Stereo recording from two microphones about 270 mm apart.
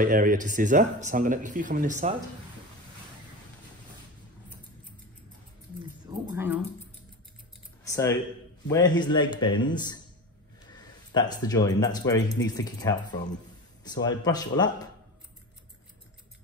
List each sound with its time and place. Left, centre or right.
0.0 s speech: right
6.0 s speech: centre
7.8 s speech: centre